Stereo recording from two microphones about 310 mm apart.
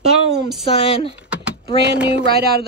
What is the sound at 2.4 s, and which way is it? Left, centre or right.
Speech, right.